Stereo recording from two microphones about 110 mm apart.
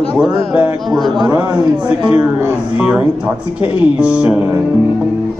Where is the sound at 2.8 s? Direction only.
10° right (ahead or behind).